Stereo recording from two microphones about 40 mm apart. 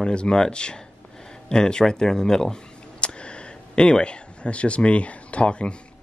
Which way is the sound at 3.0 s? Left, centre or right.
Left.